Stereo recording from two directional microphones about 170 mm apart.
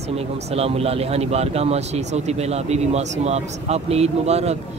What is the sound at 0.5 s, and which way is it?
Speech, 35° right (ahead or behind).